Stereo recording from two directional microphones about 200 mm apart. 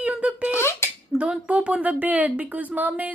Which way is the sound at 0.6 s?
10° left (ahead or behind).